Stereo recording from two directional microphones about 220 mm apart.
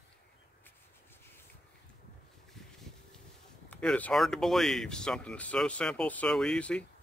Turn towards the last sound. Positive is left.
turn(degrees=5)  # may be behind; listen again after turning